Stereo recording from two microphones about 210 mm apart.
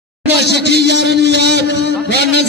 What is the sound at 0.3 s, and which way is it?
Speech, 55° left (ahead or behind).